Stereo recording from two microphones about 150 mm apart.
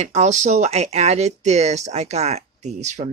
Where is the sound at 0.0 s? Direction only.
50° right (ahead or behind).